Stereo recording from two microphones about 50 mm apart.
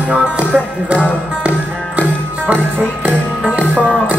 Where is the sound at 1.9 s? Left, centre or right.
Right.